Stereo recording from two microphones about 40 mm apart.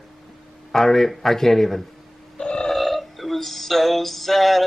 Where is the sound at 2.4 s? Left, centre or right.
Left.